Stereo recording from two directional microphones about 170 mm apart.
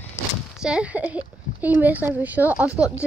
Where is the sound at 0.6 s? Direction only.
5° right (ahead or behind).